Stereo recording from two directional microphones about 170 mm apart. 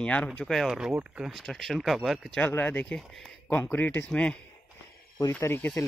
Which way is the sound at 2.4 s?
10° left (ahead or behind).